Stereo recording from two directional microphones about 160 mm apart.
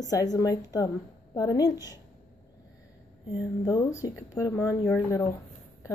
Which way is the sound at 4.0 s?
20° left (ahead or behind).